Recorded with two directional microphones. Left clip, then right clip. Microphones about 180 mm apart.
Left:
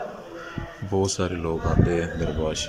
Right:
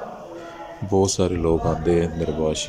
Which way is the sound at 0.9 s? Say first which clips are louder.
Right 5 dB; 25° right (ahead or behind).